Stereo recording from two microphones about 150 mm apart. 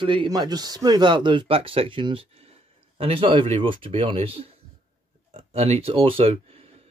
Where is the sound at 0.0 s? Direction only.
35° right (ahead or behind).